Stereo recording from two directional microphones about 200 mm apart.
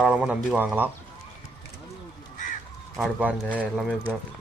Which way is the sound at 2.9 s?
5° right (ahead or behind).